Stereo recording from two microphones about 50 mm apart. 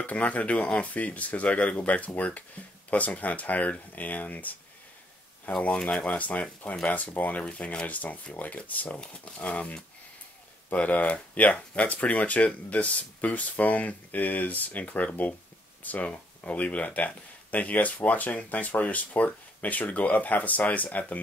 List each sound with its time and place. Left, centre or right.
0.0 s speech: left
5.8 s speech: left